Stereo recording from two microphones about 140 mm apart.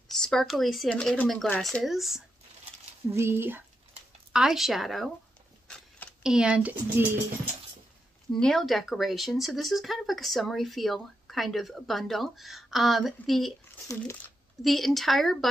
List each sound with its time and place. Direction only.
0.1 s speech: 5° left (ahead or behind)
3.1 s speech: 15° right (ahead or behind)
4.3 s speech: 5° right (ahead or behind)
6.2 s speech: 5° right (ahead or behind)
8.3 s speech: 5° left (ahead or behind)
13.8 s speech: 20° left (ahead or behind)
14.6 s speech: centre (ahead or behind)